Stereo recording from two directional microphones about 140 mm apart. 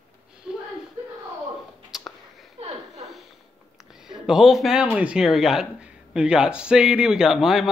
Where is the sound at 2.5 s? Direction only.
50° right (ahead or behind).